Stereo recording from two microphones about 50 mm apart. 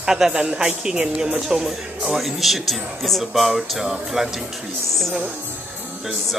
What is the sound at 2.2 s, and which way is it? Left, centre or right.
Speech, centre.